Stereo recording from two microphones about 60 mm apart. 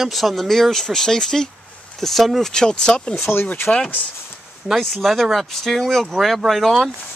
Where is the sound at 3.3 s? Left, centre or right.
Left.